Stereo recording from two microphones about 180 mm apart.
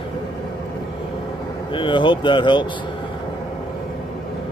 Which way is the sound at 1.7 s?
25° left (ahead or behind).